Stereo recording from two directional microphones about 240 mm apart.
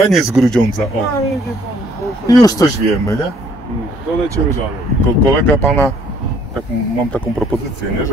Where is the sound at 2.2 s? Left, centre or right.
Centre.